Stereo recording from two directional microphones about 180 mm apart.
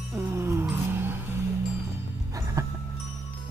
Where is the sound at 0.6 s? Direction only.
10° right (ahead or behind).